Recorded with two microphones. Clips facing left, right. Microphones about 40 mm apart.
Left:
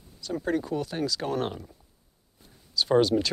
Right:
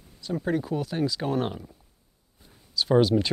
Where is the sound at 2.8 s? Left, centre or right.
Centre.